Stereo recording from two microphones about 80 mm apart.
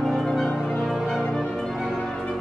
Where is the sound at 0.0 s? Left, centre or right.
Centre.